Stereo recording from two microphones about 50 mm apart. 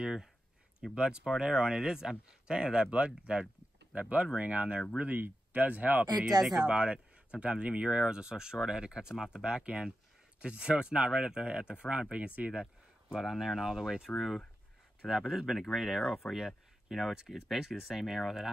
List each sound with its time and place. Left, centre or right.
0.0 s speech: centre; by 6.0 s right
6.1 s speech: centre
6.8 s speech: right
13.1 s speech: centre